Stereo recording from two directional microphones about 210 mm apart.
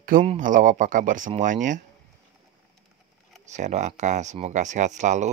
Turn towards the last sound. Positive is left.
turn(degrees=-35)  # may be behind; listen again after turning